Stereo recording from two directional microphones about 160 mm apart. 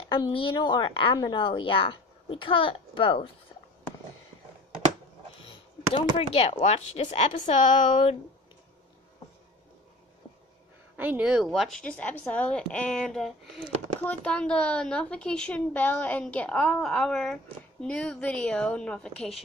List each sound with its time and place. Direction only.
0.0 s a woman's voice: 35° left (ahead or behind)
5.9 s speech: 35° left (ahead or behind)
11.0 s a woman's voice: 10° right (ahead or behind)